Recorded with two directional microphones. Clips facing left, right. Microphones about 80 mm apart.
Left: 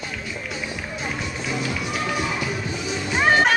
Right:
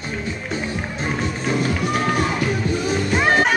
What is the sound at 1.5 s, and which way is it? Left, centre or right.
Music, right.